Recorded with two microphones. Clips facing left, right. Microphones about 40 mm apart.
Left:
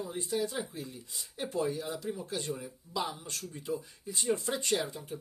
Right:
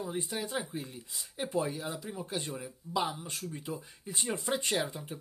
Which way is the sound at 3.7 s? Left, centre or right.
Right.